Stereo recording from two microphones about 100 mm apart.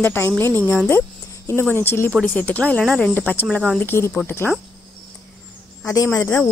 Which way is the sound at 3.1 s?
20° left (ahead or behind).